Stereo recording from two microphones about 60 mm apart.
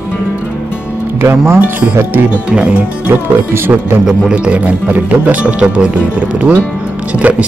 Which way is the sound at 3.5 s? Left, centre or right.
Right.